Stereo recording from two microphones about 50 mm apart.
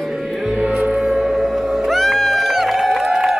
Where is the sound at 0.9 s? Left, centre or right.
Centre.